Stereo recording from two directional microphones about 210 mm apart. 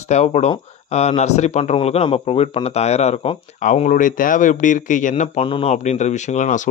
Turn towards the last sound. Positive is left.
turn(degrees=35)  # may be behind; listen again after turning